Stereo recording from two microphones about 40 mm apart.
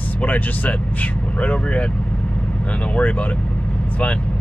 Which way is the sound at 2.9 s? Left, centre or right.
Left.